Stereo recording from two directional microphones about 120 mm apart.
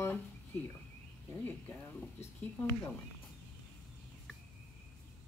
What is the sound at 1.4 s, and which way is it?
A woman's voice, 10° left (ahead or behind).